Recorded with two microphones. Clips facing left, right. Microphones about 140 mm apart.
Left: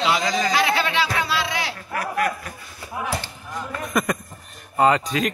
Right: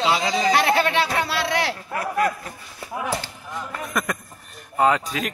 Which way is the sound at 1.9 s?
25° right (ahead or behind).